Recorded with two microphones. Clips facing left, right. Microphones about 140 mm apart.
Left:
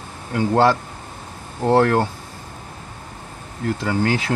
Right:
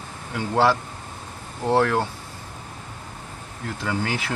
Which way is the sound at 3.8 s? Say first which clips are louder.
Left 5 dB; 40° left (ahead or behind).